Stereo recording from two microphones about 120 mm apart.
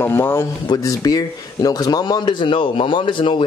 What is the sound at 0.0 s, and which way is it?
Speech, 20° left (ahead or behind).